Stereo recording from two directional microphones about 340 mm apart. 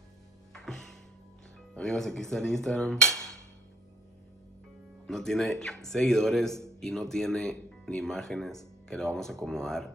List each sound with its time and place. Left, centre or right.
0.5 s music: centre
1.8 s speech: centre
5.0 s speech: centre